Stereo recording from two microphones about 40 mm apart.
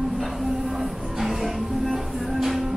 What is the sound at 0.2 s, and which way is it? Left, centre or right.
Music, centre.